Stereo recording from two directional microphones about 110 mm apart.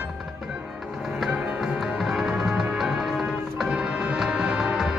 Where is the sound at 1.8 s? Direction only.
5° right (ahead or behind).